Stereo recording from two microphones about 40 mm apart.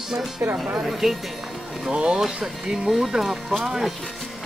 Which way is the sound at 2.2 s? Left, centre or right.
Centre.